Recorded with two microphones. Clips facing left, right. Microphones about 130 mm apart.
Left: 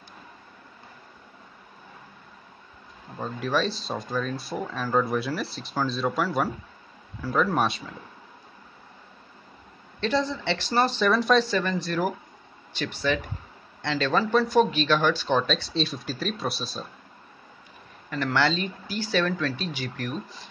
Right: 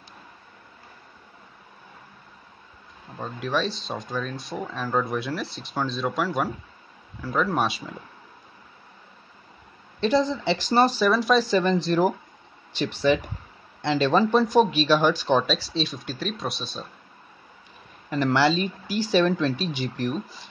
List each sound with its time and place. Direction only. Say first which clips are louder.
3.2 s speech: even; centre (ahead or behind)
9.9 s speech: right 4 dB; 15° right (ahead or behind)
11.0 s speech: right 1 dB; centre (ahead or behind)
11.5 s speech: right 5 dB; 20° right (ahead or behind)
15.5 s speech: even; centre (ahead or behind)
18.1 s speech: right 4 dB; 15° right (ahead or behind)